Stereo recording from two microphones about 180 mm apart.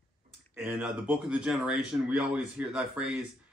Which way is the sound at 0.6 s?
5° right (ahead or behind).